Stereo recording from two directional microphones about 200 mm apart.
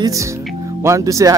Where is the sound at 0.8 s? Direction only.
15° right (ahead or behind).